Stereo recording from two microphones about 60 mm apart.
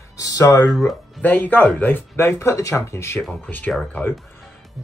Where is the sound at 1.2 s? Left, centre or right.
Left.